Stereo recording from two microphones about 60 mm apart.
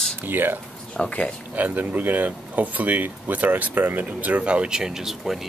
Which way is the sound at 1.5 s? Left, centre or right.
Right.